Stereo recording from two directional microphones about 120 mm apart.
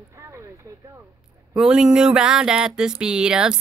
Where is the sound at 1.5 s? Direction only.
5° right (ahead or behind).